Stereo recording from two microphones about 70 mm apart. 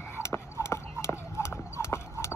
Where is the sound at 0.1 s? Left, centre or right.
Left.